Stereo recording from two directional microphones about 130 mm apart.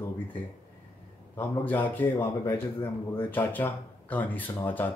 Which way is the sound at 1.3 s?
15° left (ahead or behind).